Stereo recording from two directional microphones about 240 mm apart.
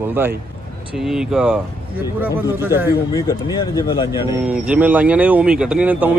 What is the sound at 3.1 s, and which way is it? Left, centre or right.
Speech, centre.